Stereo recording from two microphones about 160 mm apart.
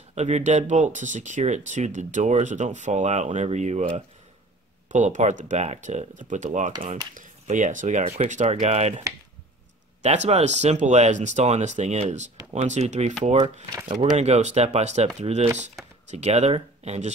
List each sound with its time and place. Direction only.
0.1 s speech: 45° right (ahead or behind)
4.8 s speech: 50° right (ahead or behind)
10.0 s speech: 45° right (ahead or behind)
14.1 s speech: 45° right (ahead or behind)